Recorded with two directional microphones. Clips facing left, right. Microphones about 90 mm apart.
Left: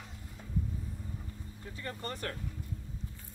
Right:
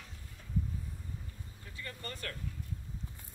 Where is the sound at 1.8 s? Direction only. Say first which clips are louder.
Left 4 dB; 30° left (ahead or behind).